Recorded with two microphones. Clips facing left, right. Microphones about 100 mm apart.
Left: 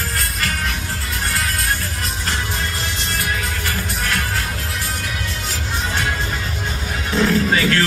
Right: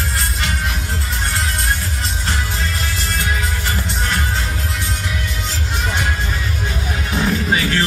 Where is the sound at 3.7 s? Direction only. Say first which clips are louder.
Right 1 dB; 25° right (ahead or behind).